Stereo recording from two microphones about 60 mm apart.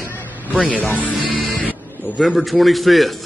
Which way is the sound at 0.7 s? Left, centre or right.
Left.